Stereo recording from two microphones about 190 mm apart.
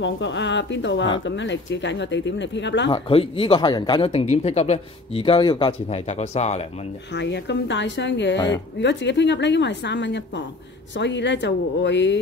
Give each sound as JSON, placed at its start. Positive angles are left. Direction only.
{"t": 0.0, "sound": "a woman's voice", "side_deg": 70}
{"t": 2.9, "sound": "speech", "side_deg": 30}
{"t": 7.2, "sound": "a woman's voice", "side_deg": 65}